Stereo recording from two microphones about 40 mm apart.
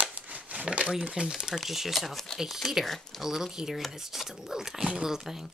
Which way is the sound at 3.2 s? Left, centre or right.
Centre.